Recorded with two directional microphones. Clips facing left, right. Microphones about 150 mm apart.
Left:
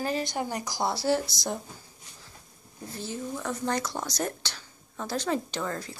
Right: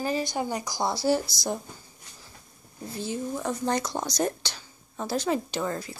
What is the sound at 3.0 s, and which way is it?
Speech, 15° right (ahead or behind).